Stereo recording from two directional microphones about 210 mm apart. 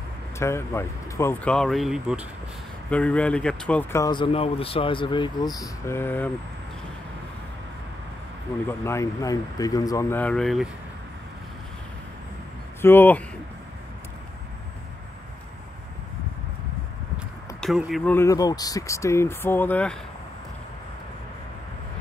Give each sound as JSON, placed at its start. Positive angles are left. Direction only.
{"t": 0.4, "sound": "speech", "side_deg": 10}
{"t": 4.0, "sound": "speech", "side_deg": 20}
{"t": 8.6, "sound": "speech", "side_deg": 15}
{"t": 12.8, "sound": "speech", "side_deg": 10}
{"t": 17.6, "sound": "speech", "side_deg": 0}
{"t": 18.1, "sound": "speech", "side_deg": 15}